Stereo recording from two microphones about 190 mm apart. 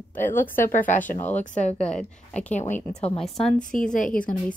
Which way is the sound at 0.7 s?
40° left (ahead or behind).